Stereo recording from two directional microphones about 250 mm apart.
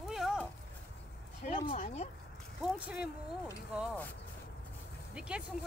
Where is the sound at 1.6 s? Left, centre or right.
Left.